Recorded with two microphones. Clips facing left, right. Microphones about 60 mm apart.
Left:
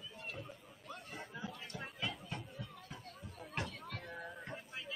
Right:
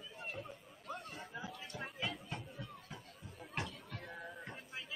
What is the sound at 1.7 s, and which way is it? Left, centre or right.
Chatter, centre.